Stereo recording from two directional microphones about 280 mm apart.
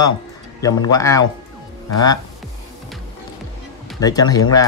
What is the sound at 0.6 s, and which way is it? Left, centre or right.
Speech, centre.